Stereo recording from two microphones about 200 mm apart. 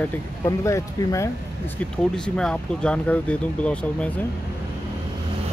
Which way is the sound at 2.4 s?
5° left (ahead or behind).